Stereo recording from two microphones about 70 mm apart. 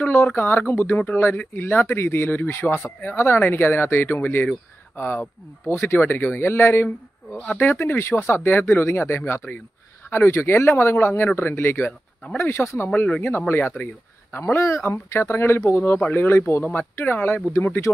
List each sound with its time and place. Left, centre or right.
0.0 s speech: left